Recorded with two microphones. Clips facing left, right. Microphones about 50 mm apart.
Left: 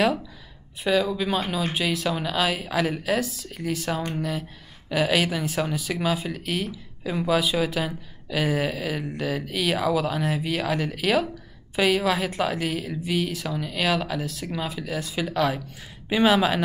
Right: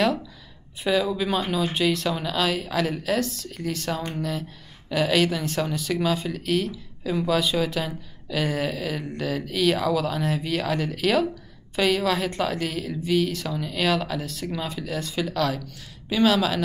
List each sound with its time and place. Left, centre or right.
0.8 s a woman's voice: centre
15.6 s speech: left